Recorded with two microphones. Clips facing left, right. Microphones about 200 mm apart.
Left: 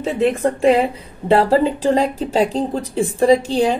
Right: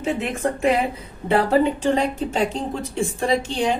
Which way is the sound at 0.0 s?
35° left (ahead or behind).